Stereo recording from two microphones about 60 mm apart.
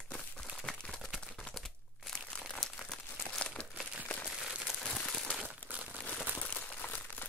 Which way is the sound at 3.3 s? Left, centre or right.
Centre.